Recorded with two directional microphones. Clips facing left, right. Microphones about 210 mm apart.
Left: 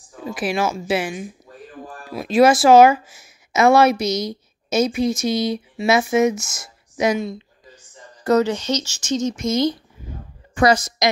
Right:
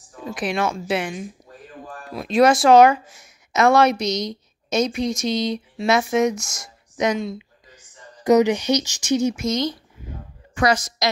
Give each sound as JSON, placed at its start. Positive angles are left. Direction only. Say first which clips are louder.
{"t": 0.2, "sound": "speech", "louder": "left 2 dB", "side_deg": 5}
{"t": 7.3, "sound": "speech", "louder": "even", "side_deg": -15}
{"t": 9.5, "sound": "speech", "louder": "left 4 dB", "side_deg": 10}
{"t": 10.5, "sound": "a woman's voice", "louder": "left 3 dB", "side_deg": 30}